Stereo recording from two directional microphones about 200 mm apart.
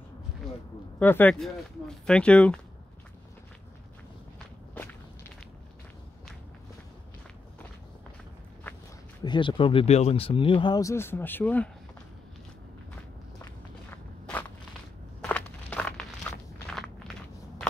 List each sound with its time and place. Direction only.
0.9 s speech: 10° left (ahead or behind)
9.2 s speech: 20° left (ahead or behind)
13.4 s walk: 10° left (ahead or behind)
15.2 s a sound: 5° left (ahead or behind)